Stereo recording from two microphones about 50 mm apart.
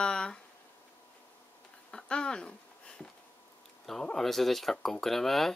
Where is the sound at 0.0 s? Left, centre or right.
Centre.